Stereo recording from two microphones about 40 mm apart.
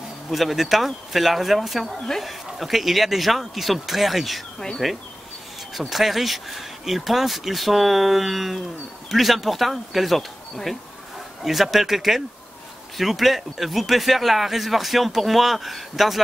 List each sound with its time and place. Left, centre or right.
0.3 s speech: centre